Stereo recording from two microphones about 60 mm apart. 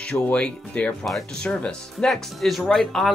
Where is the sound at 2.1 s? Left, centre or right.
Centre.